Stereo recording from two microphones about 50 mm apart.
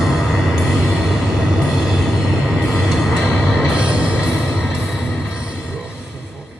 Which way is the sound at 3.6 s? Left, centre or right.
Centre.